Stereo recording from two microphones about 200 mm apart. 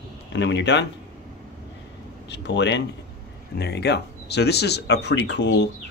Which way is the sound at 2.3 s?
60° left (ahead or behind).